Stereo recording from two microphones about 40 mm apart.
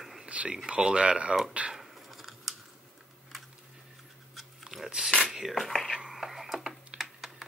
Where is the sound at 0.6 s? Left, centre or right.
Right.